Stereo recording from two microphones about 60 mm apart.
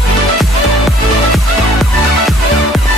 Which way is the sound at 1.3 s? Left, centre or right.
Centre.